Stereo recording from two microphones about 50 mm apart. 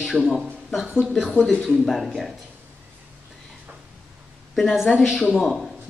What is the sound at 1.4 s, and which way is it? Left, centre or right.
Speech, centre.